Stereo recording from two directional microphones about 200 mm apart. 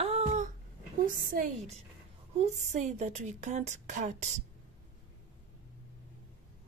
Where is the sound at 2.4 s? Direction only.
35° right (ahead or behind).